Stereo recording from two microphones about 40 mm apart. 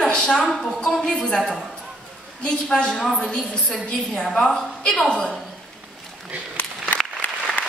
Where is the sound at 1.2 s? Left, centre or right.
Left.